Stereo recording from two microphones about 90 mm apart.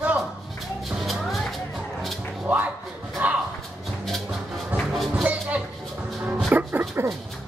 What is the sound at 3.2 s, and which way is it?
Music, 15° right (ahead or behind).